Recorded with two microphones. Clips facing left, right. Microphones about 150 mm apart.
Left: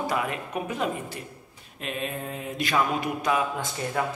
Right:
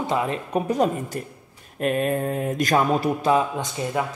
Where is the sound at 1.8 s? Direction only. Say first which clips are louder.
Right 10 dB; 50° right (ahead or behind); by 3.6 s 30° right (ahead or behind).